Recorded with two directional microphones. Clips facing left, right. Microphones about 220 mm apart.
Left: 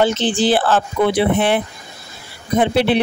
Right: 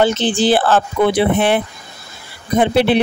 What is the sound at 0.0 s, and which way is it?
Speech, 50° right (ahead or behind).